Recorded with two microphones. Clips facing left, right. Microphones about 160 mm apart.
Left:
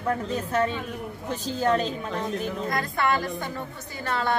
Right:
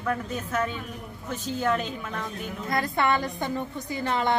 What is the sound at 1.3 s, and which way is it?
A woman's voice, 30° left (ahead or behind).